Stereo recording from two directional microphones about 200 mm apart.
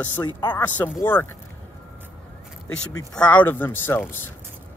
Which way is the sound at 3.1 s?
5° left (ahead or behind).